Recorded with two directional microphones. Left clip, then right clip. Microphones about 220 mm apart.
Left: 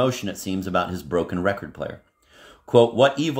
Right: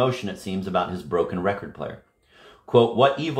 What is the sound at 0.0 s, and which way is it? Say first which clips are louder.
Speech: even; 50° left (ahead or behind).